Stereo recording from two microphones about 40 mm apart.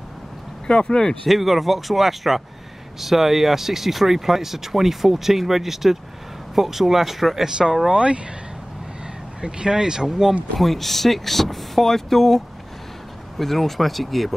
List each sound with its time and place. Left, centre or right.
0.7 s speech: centre
1.2 s speech: centre
7.4 s speech: centre
9.4 s speech: centre
10.6 s speech: centre
13.4 s speech: centre